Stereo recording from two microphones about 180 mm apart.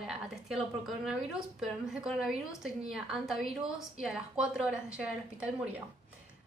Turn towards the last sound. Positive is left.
turn(degrees=-5)  # may be behind; listen again after turning